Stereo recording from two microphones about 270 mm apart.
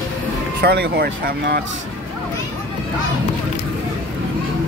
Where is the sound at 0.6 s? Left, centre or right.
Right.